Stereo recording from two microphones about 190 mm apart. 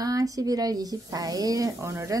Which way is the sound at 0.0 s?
20° right (ahead or behind).